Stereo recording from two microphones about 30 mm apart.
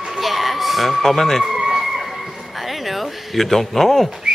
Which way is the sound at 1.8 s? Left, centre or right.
Centre.